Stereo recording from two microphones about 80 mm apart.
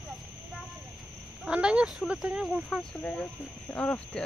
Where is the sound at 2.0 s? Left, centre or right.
Centre.